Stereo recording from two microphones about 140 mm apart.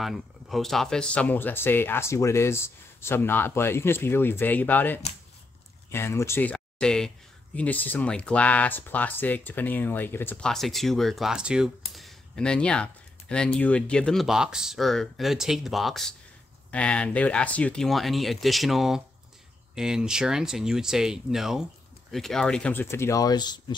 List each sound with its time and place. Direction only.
0.0 s speech: centre (ahead or behind); by 23.6 s 30° left (ahead or behind)